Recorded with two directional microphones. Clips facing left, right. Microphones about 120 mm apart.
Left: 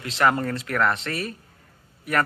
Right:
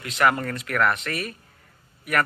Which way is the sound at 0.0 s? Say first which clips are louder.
Even; 25° left (ahead or behind).